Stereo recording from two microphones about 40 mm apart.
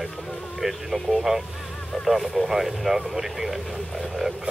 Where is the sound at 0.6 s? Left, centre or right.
Centre.